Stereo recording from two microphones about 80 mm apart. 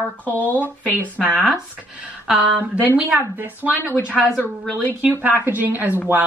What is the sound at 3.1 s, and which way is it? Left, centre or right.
Speech, right.